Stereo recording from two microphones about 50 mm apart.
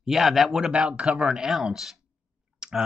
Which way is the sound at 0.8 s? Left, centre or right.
Centre.